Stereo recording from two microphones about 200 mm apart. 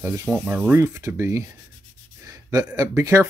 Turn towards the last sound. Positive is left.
turn(degrees=-15)  # may be behind; listen again after turning